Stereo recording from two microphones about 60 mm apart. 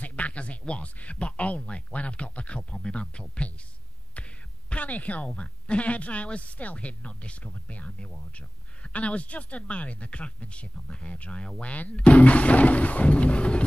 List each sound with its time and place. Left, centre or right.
0.0 s speech: left
4.6 s speech: left